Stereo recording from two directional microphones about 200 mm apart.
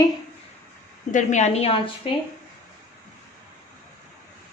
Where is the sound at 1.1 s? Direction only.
35° left (ahead or behind).